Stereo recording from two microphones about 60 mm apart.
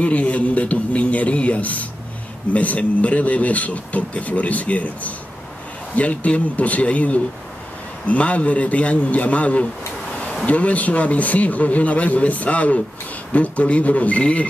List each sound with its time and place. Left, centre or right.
0.0 s speech: left